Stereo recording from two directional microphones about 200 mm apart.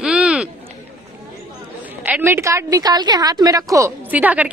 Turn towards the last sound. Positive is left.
turn(degrees=-10)  # may be behind; listen again after turning